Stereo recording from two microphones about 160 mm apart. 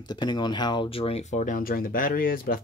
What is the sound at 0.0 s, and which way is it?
Speech, 25° left (ahead or behind).